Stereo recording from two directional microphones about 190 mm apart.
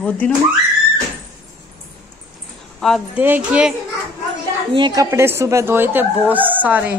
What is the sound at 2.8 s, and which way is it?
Speech, centre (ahead or behind).